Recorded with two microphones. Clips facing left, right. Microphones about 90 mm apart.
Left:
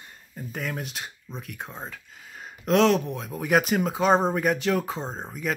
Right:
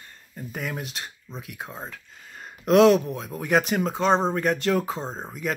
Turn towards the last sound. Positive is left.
turn(degrees=0)  # may be behind; listen again after turning